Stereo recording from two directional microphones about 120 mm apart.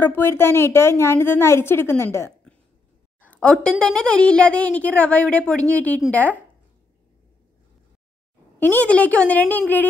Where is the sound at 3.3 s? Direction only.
10° left (ahead or behind).